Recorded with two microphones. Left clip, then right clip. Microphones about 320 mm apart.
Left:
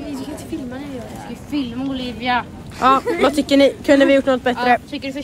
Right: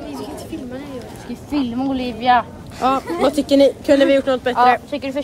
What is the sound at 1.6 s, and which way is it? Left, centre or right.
A woman's voice, right.